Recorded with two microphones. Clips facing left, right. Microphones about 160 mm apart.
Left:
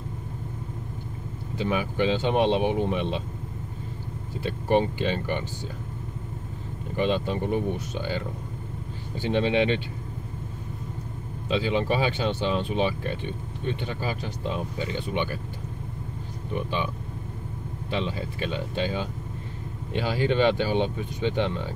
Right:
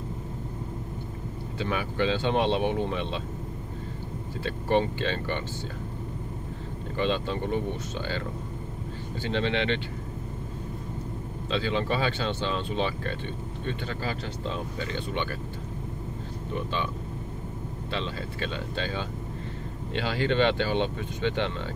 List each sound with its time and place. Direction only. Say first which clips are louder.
1.6 s speech: left 3 dB; 15° left (ahead or behind)
4.4 s speech: left 2 dB; 15° left (ahead or behind)
7.0 s speech: left 2 dB; 15° left (ahead or behind)
9.2 s speech: left 5 dB; 15° left (ahead or behind)
11.4 s speech: left 3 dB; 15° left (ahead or behind)
16.5 s speech: left 2 dB; 15° left (ahead or behind)
17.9 s speech: left 4 dB; 15° left (ahead or behind)